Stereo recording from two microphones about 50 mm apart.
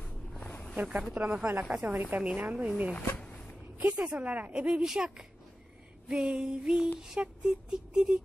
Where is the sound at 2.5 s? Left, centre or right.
Centre.